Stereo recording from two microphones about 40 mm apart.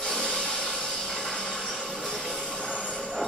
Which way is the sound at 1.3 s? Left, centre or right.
Centre.